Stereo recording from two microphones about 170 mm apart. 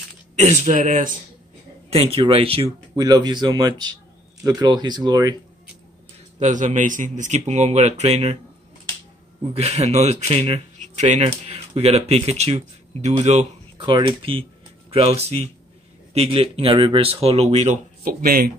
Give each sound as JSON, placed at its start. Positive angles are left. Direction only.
{"t": 0.4, "sound": "a man's voice", "side_deg": -45}
{"t": 1.9, "sound": "speech", "side_deg": -35}
{"t": 3.0, "sound": "a man's voice", "side_deg": -25}
{"t": 6.4, "sound": "a man's voice", "side_deg": -45}
{"t": 9.4, "sound": "speech", "side_deg": -35}
{"t": 13.7, "sound": "a man's voice", "side_deg": -30}
{"t": 18.0, "sound": "speech", "side_deg": -60}